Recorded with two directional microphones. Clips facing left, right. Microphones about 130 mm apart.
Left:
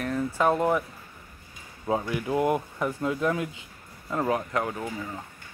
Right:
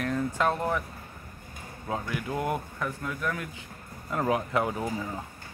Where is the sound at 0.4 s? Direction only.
15° left (ahead or behind).